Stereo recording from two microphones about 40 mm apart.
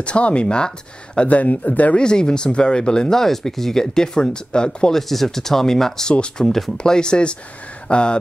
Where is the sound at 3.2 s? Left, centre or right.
Centre.